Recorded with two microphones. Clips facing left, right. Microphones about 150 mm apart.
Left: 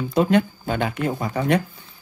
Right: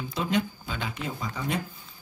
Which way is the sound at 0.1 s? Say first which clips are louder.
Left 9 dB; 55° left (ahead or behind).